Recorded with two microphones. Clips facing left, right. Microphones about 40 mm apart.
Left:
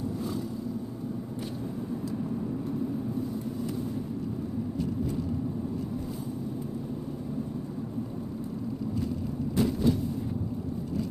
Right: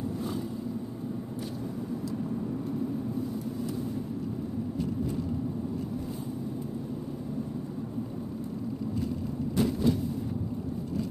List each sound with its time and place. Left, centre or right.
9.6 s vehicle: centre